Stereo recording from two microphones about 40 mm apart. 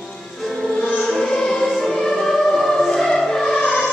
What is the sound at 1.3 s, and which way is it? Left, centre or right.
Music, centre.